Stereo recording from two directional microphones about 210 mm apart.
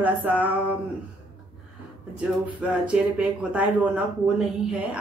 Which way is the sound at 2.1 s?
5° right (ahead or behind).